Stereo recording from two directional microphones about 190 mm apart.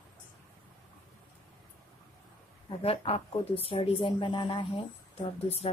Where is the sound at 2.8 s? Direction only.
30° left (ahead or behind).